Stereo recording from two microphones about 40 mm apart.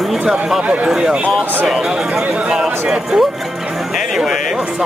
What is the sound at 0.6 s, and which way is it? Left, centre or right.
Speech, right.